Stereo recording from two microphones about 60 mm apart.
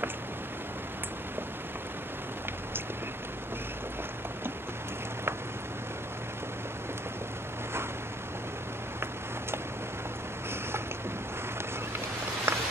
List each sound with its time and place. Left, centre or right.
12.5 s walk: right